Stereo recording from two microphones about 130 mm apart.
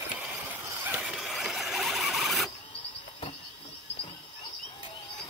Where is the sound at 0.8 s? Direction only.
5° right (ahead or behind).